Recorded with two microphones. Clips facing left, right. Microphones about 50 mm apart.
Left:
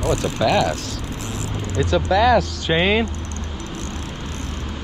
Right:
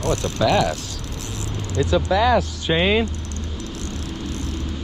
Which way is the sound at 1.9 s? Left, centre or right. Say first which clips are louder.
Left 2 dB; left.